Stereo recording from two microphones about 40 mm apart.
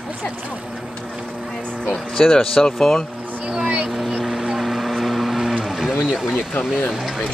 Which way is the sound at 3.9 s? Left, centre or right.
Centre.